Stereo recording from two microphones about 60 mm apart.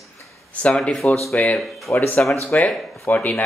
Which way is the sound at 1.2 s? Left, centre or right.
Centre.